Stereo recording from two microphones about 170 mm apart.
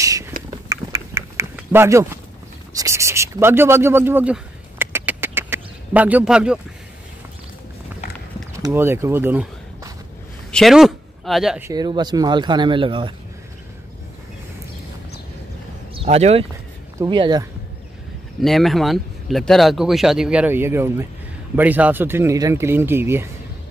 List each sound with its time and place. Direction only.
0.0 s a sound: 20° right (ahead or behind)
8.5 s speech: 15° right (ahead or behind)
10.5 s speech: centre (ahead or behind)
11.6 s speech: 25° right (ahead or behind)
15.9 s speech: 35° right (ahead or behind)
17.0 s speech: 25° right (ahead or behind)
18.4 s speech: centre (ahead or behind)